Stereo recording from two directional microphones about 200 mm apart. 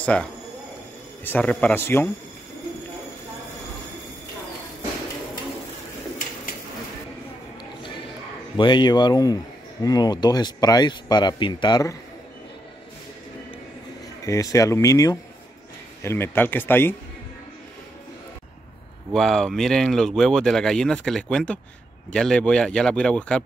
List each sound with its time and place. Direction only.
0.0 s speech: 5° left (ahead or behind)
8.5 s speech: 20° left (ahead or behind)
14.2 s speech: 15° left (ahead or behind)
19.1 s speech: centre (ahead or behind)